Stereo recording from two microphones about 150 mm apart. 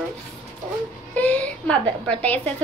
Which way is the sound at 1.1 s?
10° left (ahead or behind).